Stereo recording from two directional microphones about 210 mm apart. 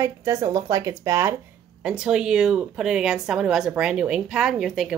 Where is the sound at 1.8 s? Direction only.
5° right (ahead or behind).